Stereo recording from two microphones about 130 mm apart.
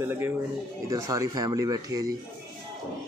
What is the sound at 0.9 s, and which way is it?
Speech, 25° right (ahead or behind).